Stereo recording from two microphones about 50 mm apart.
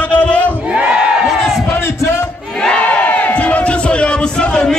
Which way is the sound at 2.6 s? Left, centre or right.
Left.